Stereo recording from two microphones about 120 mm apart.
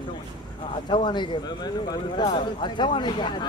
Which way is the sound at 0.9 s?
40° left (ahead or behind).